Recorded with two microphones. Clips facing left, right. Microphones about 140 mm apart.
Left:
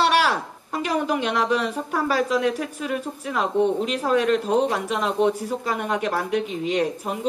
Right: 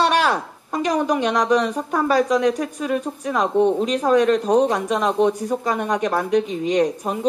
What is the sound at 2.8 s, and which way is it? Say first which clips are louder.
Speech: right 6 dB; 20° right (ahead or behind).